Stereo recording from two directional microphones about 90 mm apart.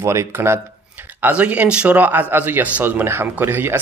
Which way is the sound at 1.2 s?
15° right (ahead or behind).